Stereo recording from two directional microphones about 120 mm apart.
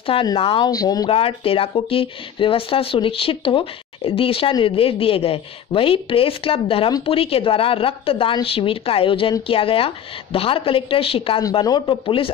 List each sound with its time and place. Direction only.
0.0 s speech: 50° left (ahead or behind)
0.7 s speech: 30° left (ahead or behind)
1.1 s speech: 50° left (ahead or behind)
11.6 s speech: 35° left (ahead or behind)